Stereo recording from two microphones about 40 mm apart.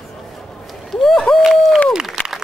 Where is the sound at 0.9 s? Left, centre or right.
Centre.